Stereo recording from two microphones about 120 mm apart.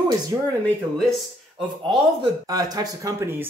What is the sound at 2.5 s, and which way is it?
Speech, 30° right (ahead or behind).